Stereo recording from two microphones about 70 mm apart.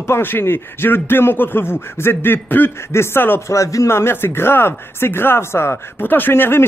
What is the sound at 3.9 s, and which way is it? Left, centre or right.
A man's voice, left.